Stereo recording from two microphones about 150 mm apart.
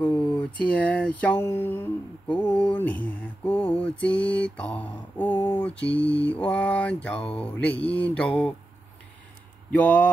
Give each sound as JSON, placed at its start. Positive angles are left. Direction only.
{"t": 0.0, "sound": "a sound", "side_deg": 10}
{"t": 0.7, "sound": "mantra", "side_deg": 10}
{"t": 2.5, "sound": "mantra", "side_deg": 35}
{"t": 2.8, "sound": "mantra", "side_deg": 10}
{"t": 5.3, "sound": "speech", "side_deg": 35}
{"t": 5.6, "sound": "mantra", "side_deg": 10}
{"t": 9.7, "sound": "speech", "side_deg": 10}